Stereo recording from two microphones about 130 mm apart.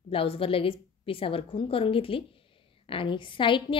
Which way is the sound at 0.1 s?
45° left (ahead or behind).